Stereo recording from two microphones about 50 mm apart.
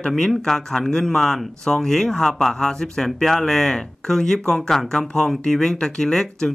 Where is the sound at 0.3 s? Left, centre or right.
Centre.